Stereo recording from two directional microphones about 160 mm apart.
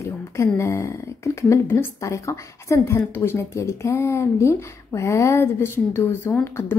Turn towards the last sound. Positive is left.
turn(degrees=15)  # may be behind; listen again after turning